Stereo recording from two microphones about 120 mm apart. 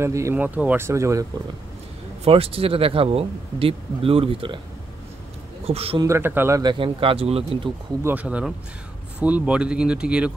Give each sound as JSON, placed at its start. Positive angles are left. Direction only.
{"t": 0.0, "sound": "speech", "side_deg": -25}
{"t": 0.4, "sound": "speech", "side_deg": -15}
{"t": 2.2, "sound": "speech", "side_deg": -55}
{"t": 5.7, "sound": "a man's voice", "side_deg": -55}
{"t": 6.0, "sound": "speech", "side_deg": -20}
{"t": 6.6, "sound": "speech", "side_deg": -45}
{"t": 8.0, "sound": "speech", "side_deg": -15}